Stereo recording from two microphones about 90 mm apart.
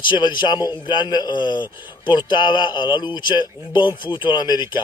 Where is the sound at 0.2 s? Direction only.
55° left (ahead or behind).